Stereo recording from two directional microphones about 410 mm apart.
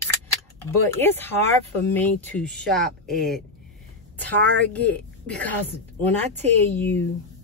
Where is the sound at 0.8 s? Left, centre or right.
Centre.